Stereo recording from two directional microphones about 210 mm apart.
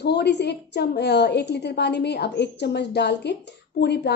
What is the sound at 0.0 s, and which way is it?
A woman's voice, 50° left (ahead or behind).